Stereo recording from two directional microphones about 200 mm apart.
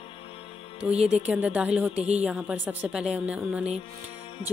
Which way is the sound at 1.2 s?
5° right (ahead or behind).